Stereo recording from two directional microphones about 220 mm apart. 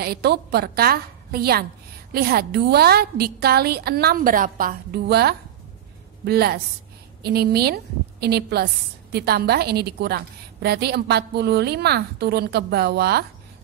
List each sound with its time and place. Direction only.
0.0 s a woman's voice: 45° right (ahead or behind)